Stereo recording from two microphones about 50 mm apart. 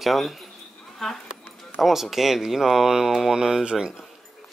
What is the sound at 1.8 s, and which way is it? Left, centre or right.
Speech, centre.